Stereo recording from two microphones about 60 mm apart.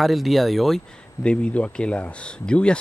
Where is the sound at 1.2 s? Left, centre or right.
Centre.